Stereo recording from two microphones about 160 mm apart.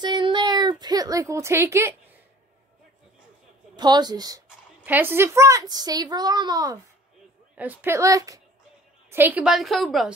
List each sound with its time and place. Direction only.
0.0 s a sound: 30° right (ahead or behind)
3.7 s speech: 25° right (ahead or behind)
4.8 s speech: 10° right (ahead or behind)
7.5 s a woman's voice: 10° right (ahead or behind)